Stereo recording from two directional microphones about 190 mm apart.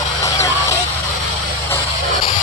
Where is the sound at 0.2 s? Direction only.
15° left (ahead or behind).